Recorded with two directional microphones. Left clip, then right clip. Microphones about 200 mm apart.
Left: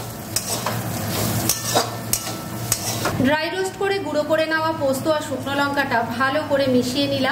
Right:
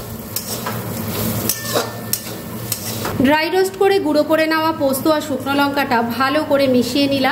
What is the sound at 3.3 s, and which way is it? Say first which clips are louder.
Speech: right 8 dB; 35° right (ahead or behind).